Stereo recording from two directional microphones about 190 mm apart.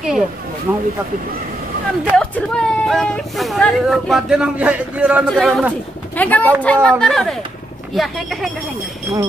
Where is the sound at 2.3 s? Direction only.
5° left (ahead or behind).